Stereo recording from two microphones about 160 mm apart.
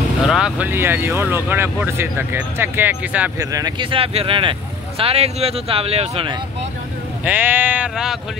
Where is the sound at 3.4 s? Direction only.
20° right (ahead or behind).